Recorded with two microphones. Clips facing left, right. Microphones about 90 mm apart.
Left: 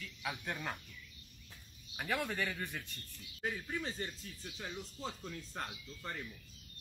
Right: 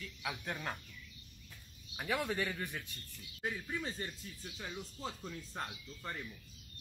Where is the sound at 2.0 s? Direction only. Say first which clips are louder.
Right 1 dB; 15° right (ahead or behind).